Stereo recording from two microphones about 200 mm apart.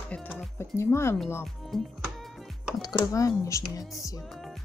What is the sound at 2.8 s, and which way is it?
Speech, 15° left (ahead or behind).